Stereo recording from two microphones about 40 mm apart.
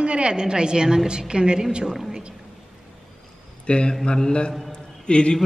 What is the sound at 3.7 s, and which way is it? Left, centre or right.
Mantra, left.